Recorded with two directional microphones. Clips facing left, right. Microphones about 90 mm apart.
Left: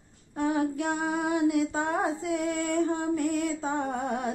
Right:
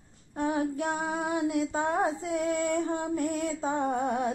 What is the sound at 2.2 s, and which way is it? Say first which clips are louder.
Female singing: even; 30° right (ahead or behind).